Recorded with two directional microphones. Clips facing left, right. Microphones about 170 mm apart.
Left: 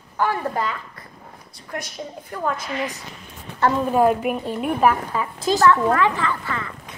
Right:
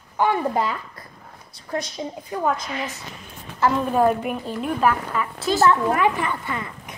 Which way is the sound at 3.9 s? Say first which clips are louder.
Left 2 dB; 5° left (ahead or behind).